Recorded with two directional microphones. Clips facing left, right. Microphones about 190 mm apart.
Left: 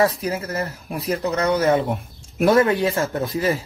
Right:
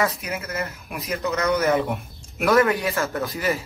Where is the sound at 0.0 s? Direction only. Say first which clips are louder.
Left 5 dB; 35° left (ahead or behind).